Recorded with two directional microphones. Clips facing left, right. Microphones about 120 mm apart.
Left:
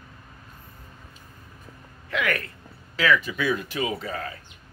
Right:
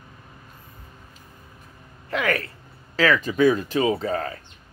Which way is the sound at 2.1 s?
35° right (ahead or behind).